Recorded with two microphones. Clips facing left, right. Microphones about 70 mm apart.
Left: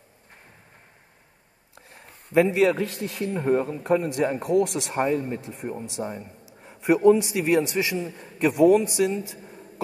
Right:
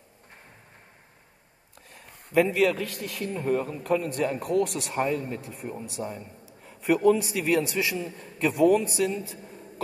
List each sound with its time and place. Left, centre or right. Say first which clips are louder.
1.8 s a sound: left 1 dB; left
2.6 s speech: left 3 dB; left
4.5 s speech: left 4 dB; right
4.9 s a man's voice: left 3 dB; left
6.6 s a sound: left 3 dB; left
7.3 s a man's voice: left 3 dB; left